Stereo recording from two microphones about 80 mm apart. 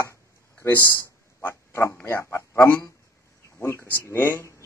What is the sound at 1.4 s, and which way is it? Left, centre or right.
Pig, left.